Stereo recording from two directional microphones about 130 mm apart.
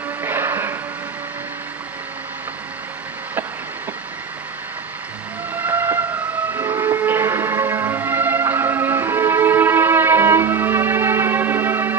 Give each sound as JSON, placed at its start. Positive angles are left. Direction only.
{"t": 0.2, "sound": "music", "side_deg": -20}
{"t": 5.6, "sound": "vehicle", "side_deg": -15}
{"t": 6.5, "sound": "music", "side_deg": -20}